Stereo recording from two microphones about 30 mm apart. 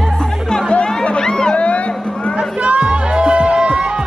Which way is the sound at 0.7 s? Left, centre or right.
Left.